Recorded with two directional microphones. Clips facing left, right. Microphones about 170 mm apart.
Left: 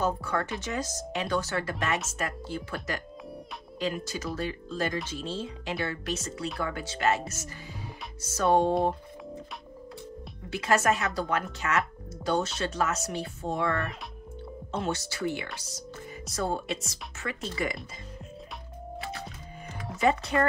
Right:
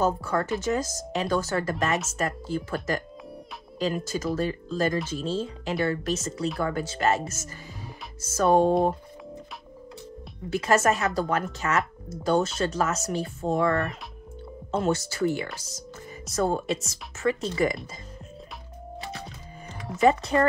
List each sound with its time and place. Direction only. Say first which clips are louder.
0.0 s speech: right 4 dB; 40° right (ahead or behind)
10.5 s speech: right 3 dB; 45° right (ahead or behind)
20.3 s speech: right 4 dB; 30° right (ahead or behind)